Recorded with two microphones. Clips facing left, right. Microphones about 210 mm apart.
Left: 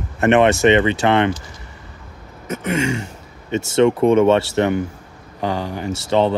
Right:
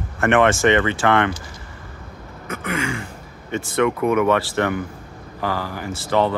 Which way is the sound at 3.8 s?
30° left (ahead or behind).